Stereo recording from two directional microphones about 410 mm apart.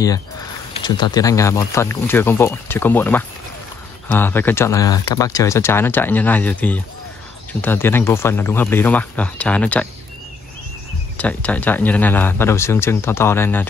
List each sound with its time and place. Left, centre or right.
0.8 s speech: centre
11.1 s speech: centre